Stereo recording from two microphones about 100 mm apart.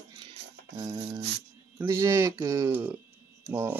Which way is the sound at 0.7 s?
40° right (ahead or behind).